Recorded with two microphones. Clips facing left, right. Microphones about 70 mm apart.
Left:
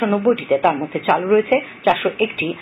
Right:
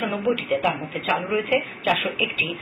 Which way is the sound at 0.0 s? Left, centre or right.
Left.